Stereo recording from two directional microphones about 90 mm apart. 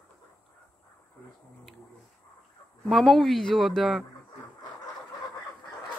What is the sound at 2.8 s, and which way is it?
A woman's voice, centre (ahead or behind).